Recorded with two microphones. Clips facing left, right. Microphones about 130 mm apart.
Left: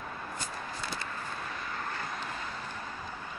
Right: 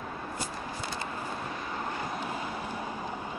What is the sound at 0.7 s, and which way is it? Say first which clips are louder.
Vehicle: right 3 dB; 20° right (ahead or behind).